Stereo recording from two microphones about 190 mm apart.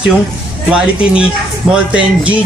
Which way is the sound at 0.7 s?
5° right (ahead or behind).